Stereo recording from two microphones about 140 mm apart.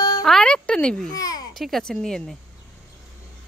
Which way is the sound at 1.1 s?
25° left (ahead or behind).